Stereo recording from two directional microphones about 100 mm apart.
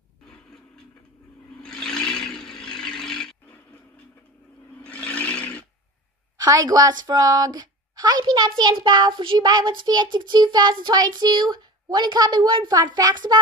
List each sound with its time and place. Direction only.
1.6 s a sound: 5° left (ahead or behind)
4.8 s roar: 10° left (ahead or behind)
6.3 s a woman's voice: 40° right (ahead or behind)